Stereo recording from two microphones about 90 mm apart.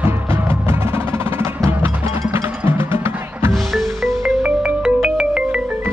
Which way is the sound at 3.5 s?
5° left (ahead or behind).